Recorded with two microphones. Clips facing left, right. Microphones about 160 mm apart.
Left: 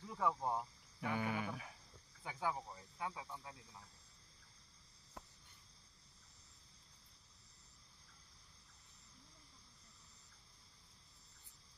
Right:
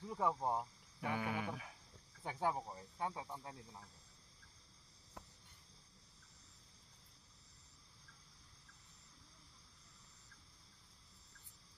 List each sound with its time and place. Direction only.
0.0 s speech: 20° right (ahead or behind); by 1.7 s 5° right (ahead or behind)
2.2 s speech: 35° right (ahead or behind)